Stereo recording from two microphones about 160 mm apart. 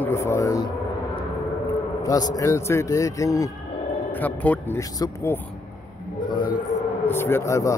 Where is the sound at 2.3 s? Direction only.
20° left (ahead or behind).